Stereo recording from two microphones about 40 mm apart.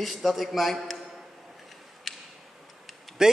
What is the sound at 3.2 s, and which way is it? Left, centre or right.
Speech, centre.